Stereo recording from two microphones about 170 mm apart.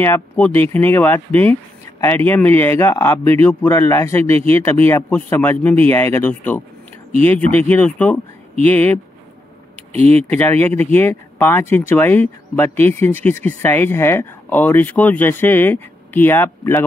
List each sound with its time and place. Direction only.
0.0 s speech: 15° left (ahead or behind)
9.9 s speech: 40° right (ahead or behind)
10.2 s speech: 10° left (ahead or behind)